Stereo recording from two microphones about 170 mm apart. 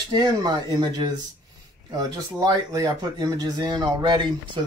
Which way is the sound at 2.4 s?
20° right (ahead or behind).